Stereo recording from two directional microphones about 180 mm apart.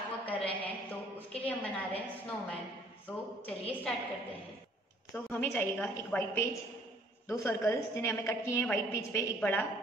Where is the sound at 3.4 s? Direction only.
10° left (ahead or behind).